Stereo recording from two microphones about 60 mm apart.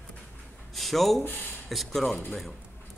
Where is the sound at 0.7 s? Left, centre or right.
Centre.